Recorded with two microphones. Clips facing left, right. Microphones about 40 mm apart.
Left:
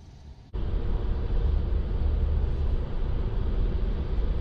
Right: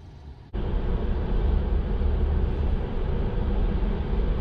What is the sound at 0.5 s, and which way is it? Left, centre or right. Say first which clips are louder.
Vehicle: right 5 dB; right.